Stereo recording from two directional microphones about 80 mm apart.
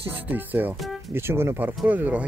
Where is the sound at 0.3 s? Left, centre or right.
Right.